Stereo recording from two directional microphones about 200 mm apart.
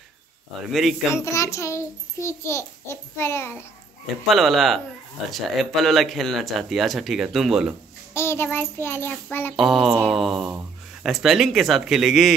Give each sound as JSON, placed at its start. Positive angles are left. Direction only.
{"t": 0.7, "sound": "speech", "side_deg": 0}
{"t": 1.1, "sound": "a child's voice", "side_deg": 15}
{"t": 4.3, "sound": "speech", "side_deg": 0}
{"t": 8.1, "sound": "a child's voice", "side_deg": 10}
{"t": 9.6, "sound": "speech", "side_deg": 0}